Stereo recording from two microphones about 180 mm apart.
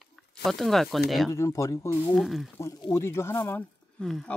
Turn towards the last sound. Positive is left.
turn(degrees=5)  # may be behind; listen again after turning